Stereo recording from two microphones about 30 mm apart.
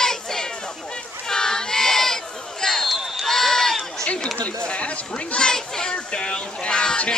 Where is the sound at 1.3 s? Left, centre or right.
Centre.